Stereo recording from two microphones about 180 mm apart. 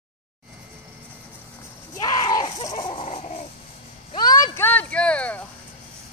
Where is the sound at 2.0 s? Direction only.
20° left (ahead or behind); by 3.4 s 35° left (ahead or behind).